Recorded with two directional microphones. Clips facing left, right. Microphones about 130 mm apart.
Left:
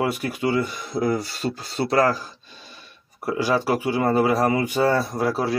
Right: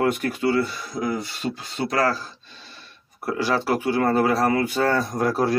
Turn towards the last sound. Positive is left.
turn(degrees=0)  # may be behind; listen again after turning